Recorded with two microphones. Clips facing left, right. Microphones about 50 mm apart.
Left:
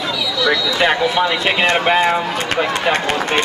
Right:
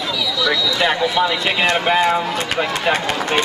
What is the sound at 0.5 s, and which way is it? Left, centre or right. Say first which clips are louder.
Speech: left 3 dB; left.